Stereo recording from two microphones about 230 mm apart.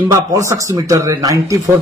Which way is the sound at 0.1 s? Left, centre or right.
Centre.